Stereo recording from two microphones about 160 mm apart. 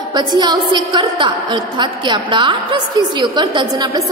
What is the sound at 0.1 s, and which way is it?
A woman's voice, 25° right (ahead or behind).